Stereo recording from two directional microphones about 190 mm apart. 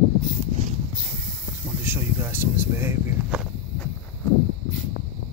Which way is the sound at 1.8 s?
10° right (ahead or behind).